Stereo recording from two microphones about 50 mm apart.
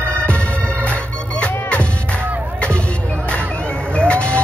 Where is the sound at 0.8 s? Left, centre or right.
Left.